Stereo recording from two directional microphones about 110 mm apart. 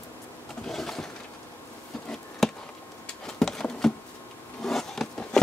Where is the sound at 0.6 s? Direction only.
5° left (ahead or behind).